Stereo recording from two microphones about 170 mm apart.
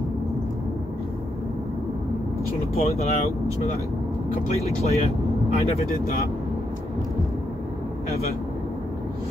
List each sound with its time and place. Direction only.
2.7 s speech: 35° left (ahead or behind)
4.6 s speech: 40° left (ahead or behind)